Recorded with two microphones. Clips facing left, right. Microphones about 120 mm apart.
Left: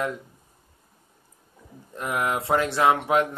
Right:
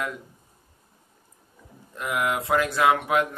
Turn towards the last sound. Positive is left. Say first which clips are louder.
# left 1 dB
turn(degrees=25)  # may be behind; listen again after turning